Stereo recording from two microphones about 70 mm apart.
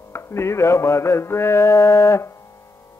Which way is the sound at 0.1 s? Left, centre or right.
Left.